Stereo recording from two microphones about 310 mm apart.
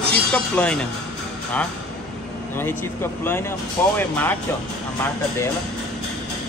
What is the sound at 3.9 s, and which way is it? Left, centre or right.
Speech, centre.